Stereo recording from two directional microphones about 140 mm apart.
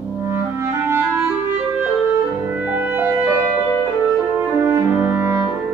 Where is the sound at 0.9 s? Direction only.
15° right (ahead or behind).